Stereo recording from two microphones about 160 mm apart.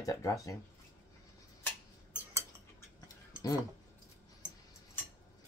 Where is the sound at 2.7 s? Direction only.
20° left (ahead or behind).